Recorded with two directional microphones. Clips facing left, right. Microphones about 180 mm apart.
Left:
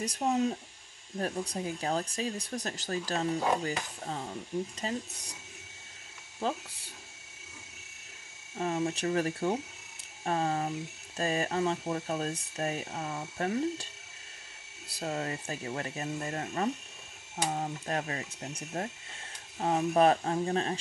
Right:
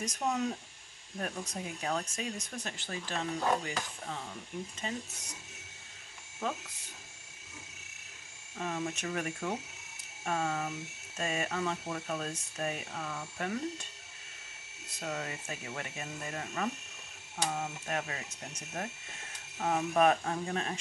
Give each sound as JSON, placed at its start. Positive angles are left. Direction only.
{"t": 0.0, "sound": "speech", "side_deg": 30}
{"t": 6.4, "sound": "speech", "side_deg": 30}
{"t": 8.5, "sound": "speech", "side_deg": 30}
{"t": 14.9, "sound": "speech", "side_deg": 30}